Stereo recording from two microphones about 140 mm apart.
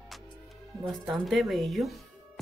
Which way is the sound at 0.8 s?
Centre (ahead or behind).